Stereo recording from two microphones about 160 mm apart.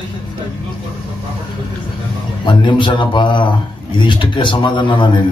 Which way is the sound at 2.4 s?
30° left (ahead or behind).